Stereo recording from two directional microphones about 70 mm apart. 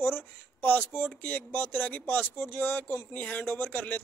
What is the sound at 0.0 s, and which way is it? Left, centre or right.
Speech, left.